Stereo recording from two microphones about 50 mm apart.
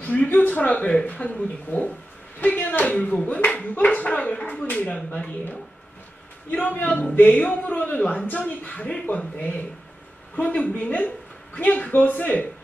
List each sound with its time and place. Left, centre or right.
0.0 s speech: left
4.9 s speech: centre
6.5 s speech: left